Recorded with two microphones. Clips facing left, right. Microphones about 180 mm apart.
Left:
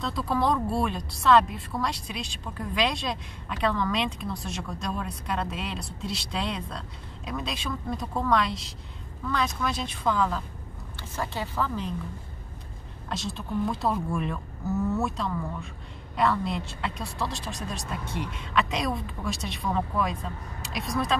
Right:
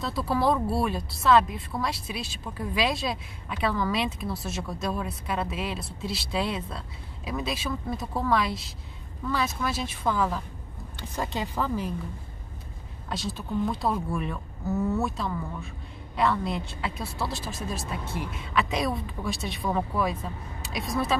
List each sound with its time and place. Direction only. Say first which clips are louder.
0.0 s a woman's voice: right 1 dB; 5° right (ahead or behind)
13.1 s speech: right 1 dB; centre (ahead or behind)